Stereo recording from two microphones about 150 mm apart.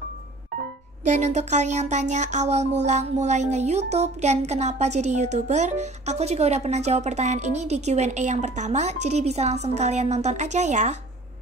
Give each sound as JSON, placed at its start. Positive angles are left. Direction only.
{"t": 1.0, "sound": "speech", "side_deg": -50}